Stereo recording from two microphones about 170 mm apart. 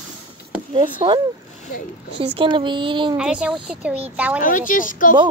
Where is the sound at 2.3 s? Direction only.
30° right (ahead or behind).